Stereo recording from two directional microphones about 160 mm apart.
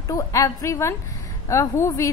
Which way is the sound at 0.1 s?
20° left (ahead or behind).